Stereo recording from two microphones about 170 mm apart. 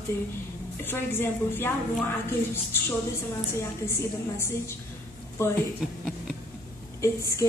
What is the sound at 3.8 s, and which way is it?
A woman's voice, 15° left (ahead or behind).